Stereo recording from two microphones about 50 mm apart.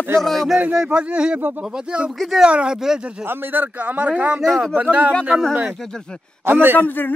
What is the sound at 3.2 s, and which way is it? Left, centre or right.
A man's voice, right.